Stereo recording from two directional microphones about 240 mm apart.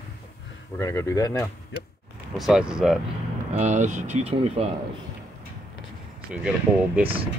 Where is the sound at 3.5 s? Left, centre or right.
Right.